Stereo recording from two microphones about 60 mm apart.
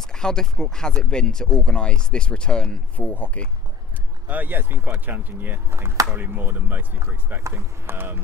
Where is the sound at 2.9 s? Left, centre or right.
Left.